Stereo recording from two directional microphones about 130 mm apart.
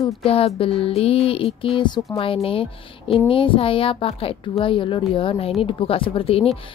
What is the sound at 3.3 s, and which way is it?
A woman's voice, 45° left (ahead or behind).